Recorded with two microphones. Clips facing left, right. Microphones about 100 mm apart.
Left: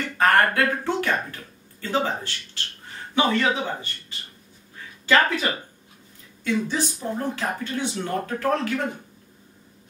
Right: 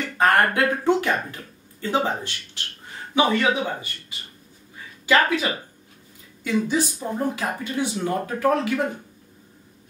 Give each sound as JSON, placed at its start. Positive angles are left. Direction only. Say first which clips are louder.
{"t": 0.2, "sound": "speech", "louder": "even", "side_deg": -15}
{"t": 5.0, "sound": "speech", "louder": "right 1 dB", "side_deg": -10}